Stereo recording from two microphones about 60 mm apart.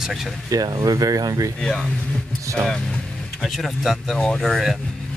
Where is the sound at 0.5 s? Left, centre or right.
Right.